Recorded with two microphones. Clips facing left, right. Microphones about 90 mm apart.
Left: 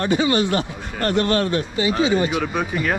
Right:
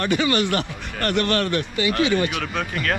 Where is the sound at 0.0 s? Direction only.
70° right (ahead or behind).